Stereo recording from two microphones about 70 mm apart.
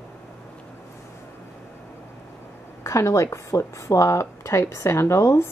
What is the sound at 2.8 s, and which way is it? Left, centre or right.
Speech, left.